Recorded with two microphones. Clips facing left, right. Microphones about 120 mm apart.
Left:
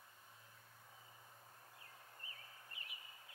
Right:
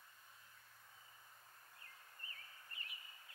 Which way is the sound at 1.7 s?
15° left (ahead or behind).